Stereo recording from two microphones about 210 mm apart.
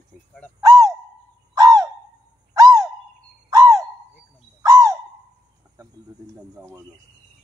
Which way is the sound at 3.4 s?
15° right (ahead or behind).